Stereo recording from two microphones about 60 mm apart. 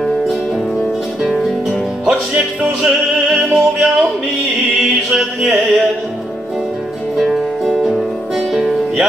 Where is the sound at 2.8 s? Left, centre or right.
Centre.